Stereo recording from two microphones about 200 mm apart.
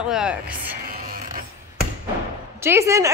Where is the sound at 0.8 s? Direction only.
45° right (ahead or behind).